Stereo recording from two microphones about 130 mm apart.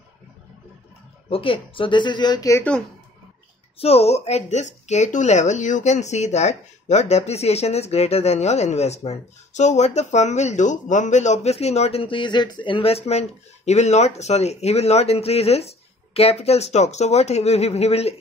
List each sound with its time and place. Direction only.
1.3 s speech: 45° left (ahead or behind)
3.7 s speech: 50° left (ahead or behind)